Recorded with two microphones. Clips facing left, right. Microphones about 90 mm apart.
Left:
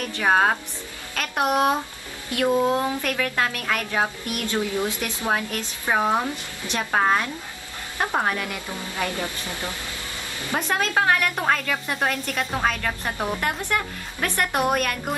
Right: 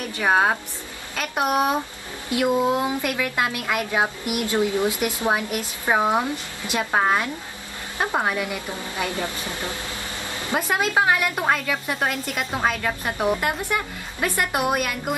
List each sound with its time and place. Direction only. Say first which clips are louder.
0.2 s speech: even; 10° right (ahead or behind)